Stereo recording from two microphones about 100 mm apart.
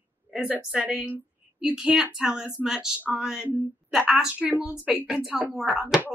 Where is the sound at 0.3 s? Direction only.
10° right (ahead or behind).